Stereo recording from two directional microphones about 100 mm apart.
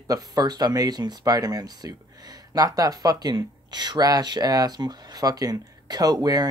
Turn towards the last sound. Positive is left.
turn(degrees=-40)  # may be behind; listen again after turning